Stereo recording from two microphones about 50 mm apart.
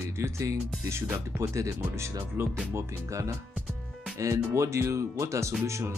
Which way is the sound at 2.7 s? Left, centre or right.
Right.